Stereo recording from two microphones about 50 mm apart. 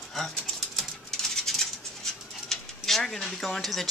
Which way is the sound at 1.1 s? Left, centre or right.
Centre.